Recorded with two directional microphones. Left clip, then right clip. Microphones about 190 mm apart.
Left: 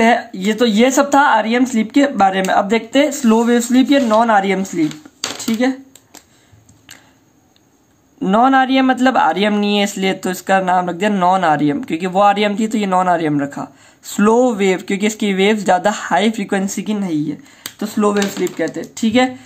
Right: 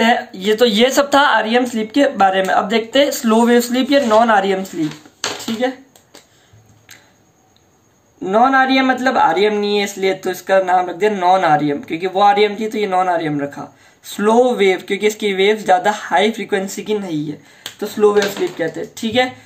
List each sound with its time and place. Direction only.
0.0 s speech: 30° left (ahead or behind)
8.2 s a man's voice: 50° left (ahead or behind)